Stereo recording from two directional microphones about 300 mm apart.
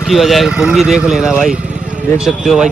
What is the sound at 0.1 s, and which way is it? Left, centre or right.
A man's voice, centre.